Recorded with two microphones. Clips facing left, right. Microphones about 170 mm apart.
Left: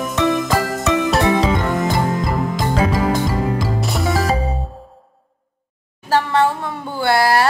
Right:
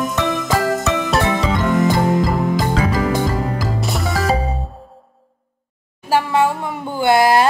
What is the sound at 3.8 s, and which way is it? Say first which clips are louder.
Music: left 2 dB; centre (ahead or behind).